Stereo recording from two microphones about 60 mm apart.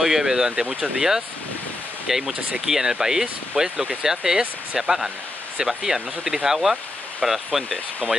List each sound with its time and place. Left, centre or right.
0.0 s speech: centre
8.0 s speech: centre